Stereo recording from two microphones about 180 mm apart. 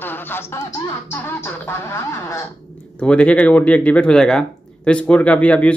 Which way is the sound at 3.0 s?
5° left (ahead or behind).